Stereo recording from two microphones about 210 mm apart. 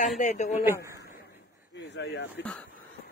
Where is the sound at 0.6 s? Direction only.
10° right (ahead or behind).